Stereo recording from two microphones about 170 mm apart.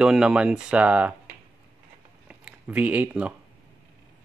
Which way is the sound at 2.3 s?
10° right (ahead or behind).